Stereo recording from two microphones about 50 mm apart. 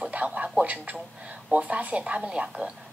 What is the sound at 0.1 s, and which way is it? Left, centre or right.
A woman's voice, right.